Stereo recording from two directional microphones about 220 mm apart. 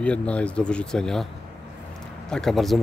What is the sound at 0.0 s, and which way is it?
A man's voice, 5° left (ahead or behind).